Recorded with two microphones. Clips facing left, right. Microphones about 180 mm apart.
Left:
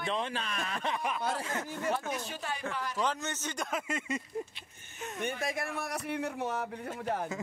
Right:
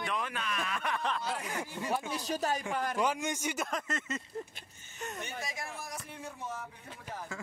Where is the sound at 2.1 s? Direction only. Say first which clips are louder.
Right 4 dB; 40° right (ahead or behind).